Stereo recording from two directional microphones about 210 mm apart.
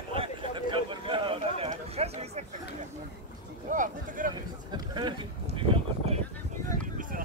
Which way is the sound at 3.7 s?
40° right (ahead or behind).